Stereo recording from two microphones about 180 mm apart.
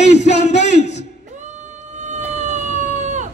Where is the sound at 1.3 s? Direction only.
40° right (ahead or behind).